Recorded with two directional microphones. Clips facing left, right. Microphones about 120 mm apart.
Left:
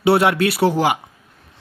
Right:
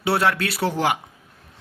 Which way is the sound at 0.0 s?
15° left (ahead or behind).